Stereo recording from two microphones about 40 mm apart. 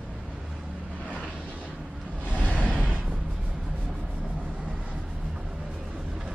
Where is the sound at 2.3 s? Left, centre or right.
Left.